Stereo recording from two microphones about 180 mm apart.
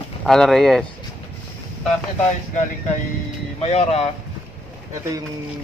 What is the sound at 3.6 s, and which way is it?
Speech, 35° left (ahead or behind).